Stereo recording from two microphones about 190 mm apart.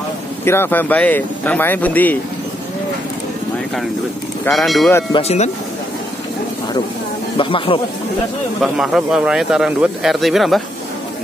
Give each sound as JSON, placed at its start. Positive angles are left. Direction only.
{"t": 0.5, "sound": "speech", "side_deg": 10}
{"t": 4.5, "sound": "speech", "side_deg": 0}
{"t": 5.1, "sound": "speech", "side_deg": 35}
{"t": 7.3, "sound": "speech", "side_deg": 25}
{"t": 8.7, "sound": "speech", "side_deg": -5}